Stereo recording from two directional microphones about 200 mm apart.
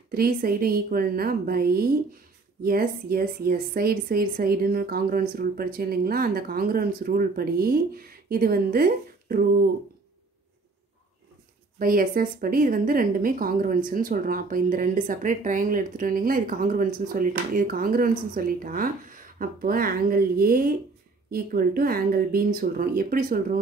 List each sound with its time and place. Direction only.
0.1 s speech: 45° right (ahead or behind)
11.8 s speech: 45° right (ahead or behind)